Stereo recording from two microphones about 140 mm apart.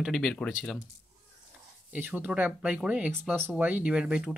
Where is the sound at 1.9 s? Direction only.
10° right (ahead or behind).